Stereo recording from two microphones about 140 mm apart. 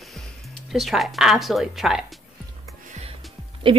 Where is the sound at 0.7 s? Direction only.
Centre (ahead or behind).